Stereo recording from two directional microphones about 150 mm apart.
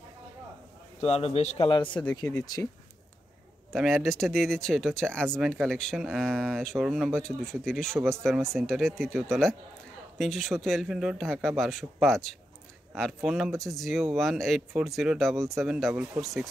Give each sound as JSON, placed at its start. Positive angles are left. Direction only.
{"t": 1.0, "sound": "a man's voice", "side_deg": 40}
{"t": 1.7, "sound": "a man's voice", "side_deg": 30}
{"t": 3.7, "sound": "speech", "side_deg": 0}